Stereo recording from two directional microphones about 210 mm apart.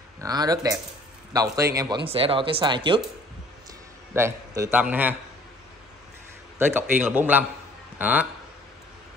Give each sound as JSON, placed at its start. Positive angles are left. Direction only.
{"t": 0.2, "sound": "a man's voice", "side_deg": -15}
{"t": 2.0, "sound": "speech", "side_deg": -25}
{"t": 4.1, "sound": "a man's voice", "side_deg": -10}
{"t": 6.6, "sound": "a man's voice", "side_deg": -5}